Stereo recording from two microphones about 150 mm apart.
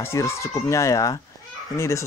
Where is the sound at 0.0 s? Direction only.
20° left (ahead or behind).